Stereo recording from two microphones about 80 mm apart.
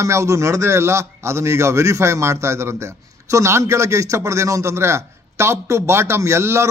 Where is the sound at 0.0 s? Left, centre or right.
Right.